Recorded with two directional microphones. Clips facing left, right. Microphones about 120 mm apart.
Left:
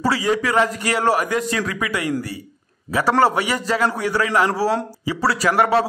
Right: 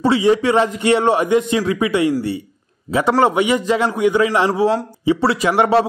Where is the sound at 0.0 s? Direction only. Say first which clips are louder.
Right 5 dB; 25° right (ahead or behind).